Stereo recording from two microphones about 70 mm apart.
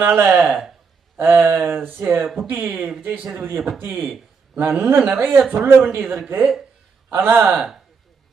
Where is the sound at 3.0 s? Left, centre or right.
Right.